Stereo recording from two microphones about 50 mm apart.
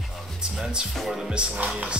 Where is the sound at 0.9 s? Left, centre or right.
Centre.